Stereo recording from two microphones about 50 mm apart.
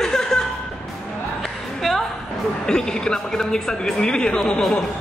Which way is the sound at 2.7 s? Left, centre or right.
Centre.